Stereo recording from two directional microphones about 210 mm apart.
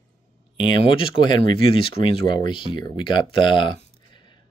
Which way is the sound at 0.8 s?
25° left (ahead or behind).